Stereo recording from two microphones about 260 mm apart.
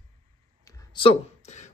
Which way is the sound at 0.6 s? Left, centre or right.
Centre.